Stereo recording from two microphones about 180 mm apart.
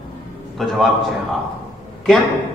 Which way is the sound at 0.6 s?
Centre (ahead or behind).